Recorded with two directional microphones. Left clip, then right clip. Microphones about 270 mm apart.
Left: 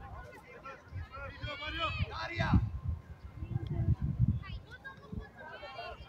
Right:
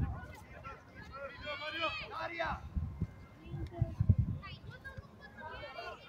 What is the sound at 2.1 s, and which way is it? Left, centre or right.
Speech, left.